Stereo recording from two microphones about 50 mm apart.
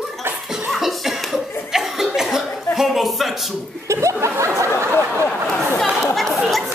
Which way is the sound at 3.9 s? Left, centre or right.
Right.